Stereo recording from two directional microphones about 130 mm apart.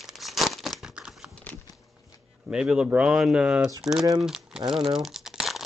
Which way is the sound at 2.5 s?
5° right (ahead or behind).